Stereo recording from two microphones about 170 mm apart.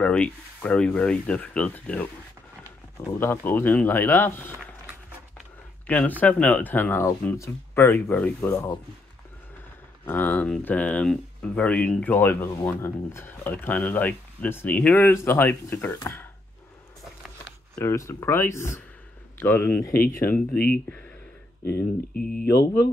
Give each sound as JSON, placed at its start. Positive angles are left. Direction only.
{"t": 0.0, "sound": "speech", "side_deg": 10}
{"t": 3.1, "sound": "speech", "side_deg": 15}
{"t": 5.9, "sound": "speech", "side_deg": 10}
{"t": 10.0, "sound": "speech", "side_deg": 10}
{"t": 17.7, "sound": "speech", "side_deg": 15}
{"t": 19.9, "sound": "speech", "side_deg": 60}
{"t": 22.3, "sound": "speech", "side_deg": 65}